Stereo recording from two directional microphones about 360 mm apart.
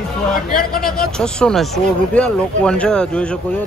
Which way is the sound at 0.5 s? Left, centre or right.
Left.